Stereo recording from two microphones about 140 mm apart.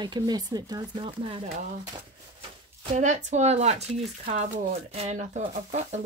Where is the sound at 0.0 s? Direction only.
30° right (ahead or behind).